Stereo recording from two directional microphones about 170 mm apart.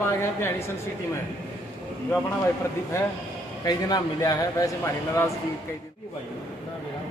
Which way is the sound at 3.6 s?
20° left (ahead or behind).